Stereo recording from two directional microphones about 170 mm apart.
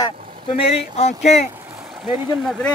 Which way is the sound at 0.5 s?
35° left (ahead or behind).